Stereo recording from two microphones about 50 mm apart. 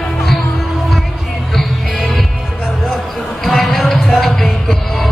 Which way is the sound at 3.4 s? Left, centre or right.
Centre.